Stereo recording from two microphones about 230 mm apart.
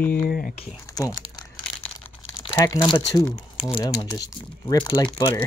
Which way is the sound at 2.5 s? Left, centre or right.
Centre.